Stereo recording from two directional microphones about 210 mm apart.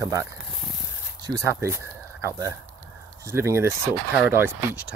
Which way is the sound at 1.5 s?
15° right (ahead or behind).